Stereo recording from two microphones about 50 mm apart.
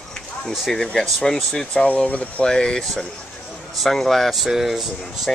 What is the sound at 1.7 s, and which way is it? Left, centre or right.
Speech, left.